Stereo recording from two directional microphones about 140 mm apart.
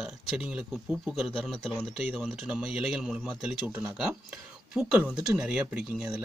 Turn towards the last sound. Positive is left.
turn(degrees=-5)  # may be behind; listen again after turning